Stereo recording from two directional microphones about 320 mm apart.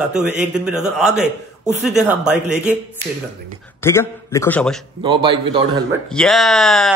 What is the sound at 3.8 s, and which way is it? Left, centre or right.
Speech, centre.